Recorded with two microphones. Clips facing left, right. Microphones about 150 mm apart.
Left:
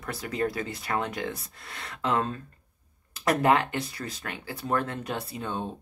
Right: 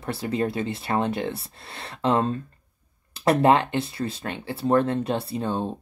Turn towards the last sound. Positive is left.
turn(degrees=-30)  # may be behind; listen again after turning